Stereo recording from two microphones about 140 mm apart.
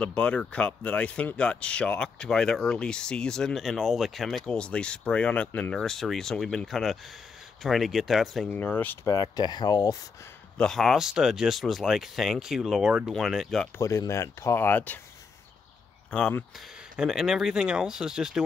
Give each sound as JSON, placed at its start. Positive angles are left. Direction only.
{"t": 0.0, "sound": "speech", "side_deg": 10}
{"t": 8.5, "sound": "speech", "side_deg": 10}
{"t": 9.0, "sound": "speech", "side_deg": 30}
{"t": 10.6, "sound": "speech", "side_deg": 0}
{"t": 13.7, "sound": "speech", "side_deg": 20}
{"t": 16.1, "sound": "speech", "side_deg": 5}
{"t": 16.9, "sound": "speech", "side_deg": -5}